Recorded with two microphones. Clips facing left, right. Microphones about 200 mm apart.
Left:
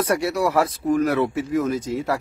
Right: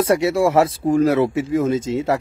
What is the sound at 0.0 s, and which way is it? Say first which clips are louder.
Speech: right 5 dB; 25° right (ahead or behind).